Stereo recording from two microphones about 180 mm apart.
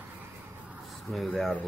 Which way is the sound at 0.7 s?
Centre (ahead or behind).